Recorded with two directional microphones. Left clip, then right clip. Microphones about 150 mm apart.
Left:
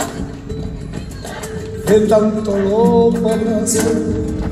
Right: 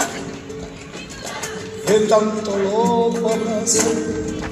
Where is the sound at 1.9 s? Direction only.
15° left (ahead or behind).